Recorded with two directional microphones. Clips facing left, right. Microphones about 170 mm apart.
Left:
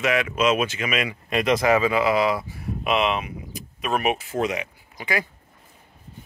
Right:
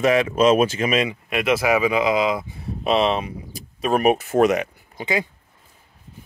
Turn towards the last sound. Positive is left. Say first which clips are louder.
# right 3 dB
turn(degrees=-20)  # may be behind; listen again after turning